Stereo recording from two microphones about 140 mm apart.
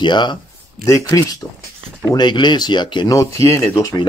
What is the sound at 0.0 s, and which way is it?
Speech, 35° left (ahead or behind).